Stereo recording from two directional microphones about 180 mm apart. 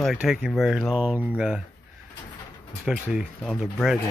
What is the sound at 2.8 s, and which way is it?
Speech, 5° right (ahead or behind).